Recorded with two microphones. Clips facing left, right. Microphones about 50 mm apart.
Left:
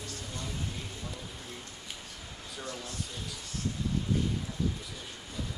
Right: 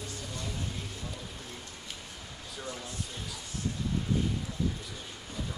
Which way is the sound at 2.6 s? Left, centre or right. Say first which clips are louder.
Even; centre.